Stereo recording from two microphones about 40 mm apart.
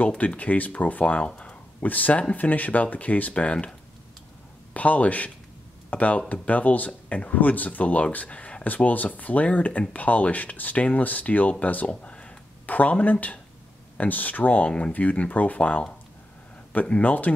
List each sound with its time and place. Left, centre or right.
0.2 s speech: left
1.9 s speech: left
4.7 s speech: left
11.9 s a sound: left
12.6 s speech: left
17.0 s speech: left